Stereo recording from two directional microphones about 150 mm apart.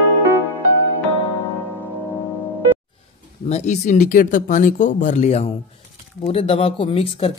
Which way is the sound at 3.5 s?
50° left (ahead or behind).